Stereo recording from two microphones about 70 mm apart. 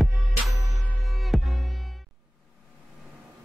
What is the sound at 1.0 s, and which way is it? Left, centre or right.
Music, centre.